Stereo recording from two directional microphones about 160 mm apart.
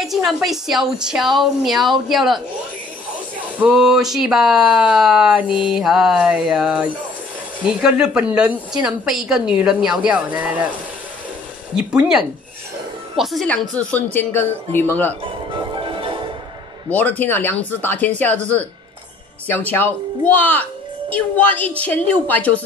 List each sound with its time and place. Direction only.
0.0 s a woman's voice: centre (ahead or behind)
3.5 s a woman's voice: 5° right (ahead or behind)
11.7 s a woman's voice: 5° right (ahead or behind); by 15.1 s 10° left (ahead or behind)
15.5 s music: 30° right (ahead or behind)
16.9 s speech: 10° left (ahead or behind)